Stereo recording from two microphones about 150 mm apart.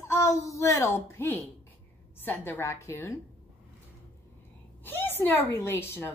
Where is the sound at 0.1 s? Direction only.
20° left (ahead or behind).